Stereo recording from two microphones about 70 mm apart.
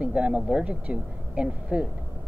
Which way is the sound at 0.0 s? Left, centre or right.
Centre.